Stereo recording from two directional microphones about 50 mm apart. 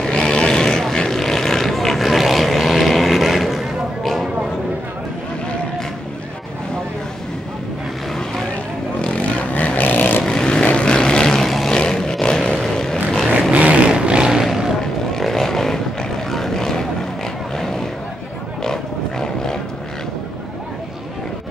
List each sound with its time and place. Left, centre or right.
0.0 s vehicle: centre
9.0 s vehicle: left
10.2 s vehicle: centre
11.4 s a sound: centre
11.7 s roar: centre
12.7 s vehicle: centre
13.5 s a sound: right
14.4 s vehicle: centre
15.1 s vehicle: centre
18.6 s roaring cats: centre